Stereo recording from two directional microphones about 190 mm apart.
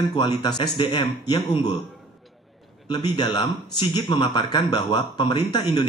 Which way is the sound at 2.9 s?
25° left (ahead or behind).